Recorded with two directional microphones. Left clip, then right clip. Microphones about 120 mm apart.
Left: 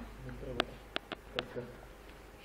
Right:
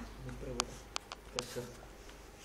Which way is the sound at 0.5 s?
65° right (ahead or behind).